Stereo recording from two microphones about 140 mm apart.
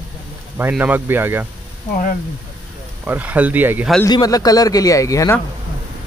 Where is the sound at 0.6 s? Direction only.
10° right (ahead or behind).